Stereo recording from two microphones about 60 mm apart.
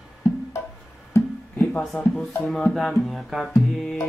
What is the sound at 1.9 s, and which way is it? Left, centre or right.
Speech, centre.